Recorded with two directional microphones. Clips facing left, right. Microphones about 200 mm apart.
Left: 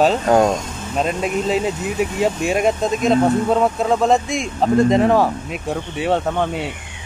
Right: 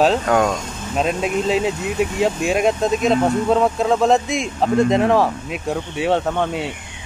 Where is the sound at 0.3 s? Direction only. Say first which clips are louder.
Left 3 dB; 35° left (ahead or behind).